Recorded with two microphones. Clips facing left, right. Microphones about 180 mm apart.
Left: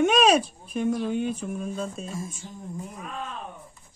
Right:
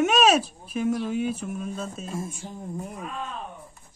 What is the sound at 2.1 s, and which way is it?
Speech, 60° right (ahead or behind).